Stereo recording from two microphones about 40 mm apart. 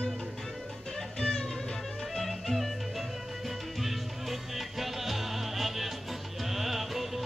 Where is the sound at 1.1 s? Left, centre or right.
Centre.